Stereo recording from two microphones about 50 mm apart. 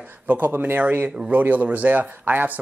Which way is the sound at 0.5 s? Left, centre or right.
Right.